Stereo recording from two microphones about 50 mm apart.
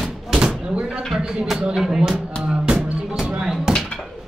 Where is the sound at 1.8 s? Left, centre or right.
Centre.